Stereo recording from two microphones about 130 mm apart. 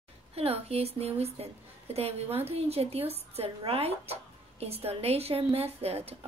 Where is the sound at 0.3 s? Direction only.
50° right (ahead or behind).